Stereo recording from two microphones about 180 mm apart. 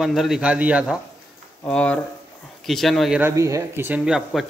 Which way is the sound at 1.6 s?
5° left (ahead or behind).